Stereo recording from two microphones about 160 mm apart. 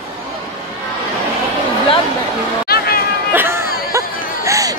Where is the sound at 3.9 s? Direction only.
20° right (ahead or behind).